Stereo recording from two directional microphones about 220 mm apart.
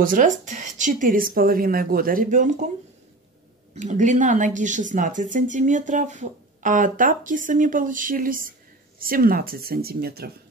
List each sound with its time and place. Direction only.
0.0 s speech: 35° right (ahead or behind)
3.7 s speech: 35° right (ahead or behind)